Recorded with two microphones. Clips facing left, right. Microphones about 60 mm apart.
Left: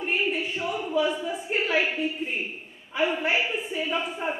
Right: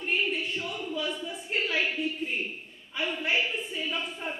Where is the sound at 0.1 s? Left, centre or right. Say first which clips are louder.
Left 1 dB; centre.